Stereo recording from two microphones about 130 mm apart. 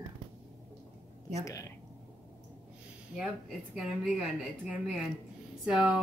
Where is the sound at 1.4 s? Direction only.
25° left (ahead or behind).